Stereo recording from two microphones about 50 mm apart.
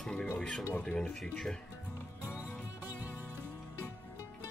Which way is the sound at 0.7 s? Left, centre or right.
Left.